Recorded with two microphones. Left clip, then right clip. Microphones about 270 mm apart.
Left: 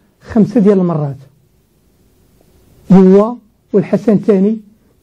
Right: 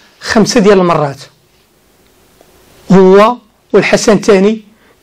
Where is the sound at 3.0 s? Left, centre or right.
Right.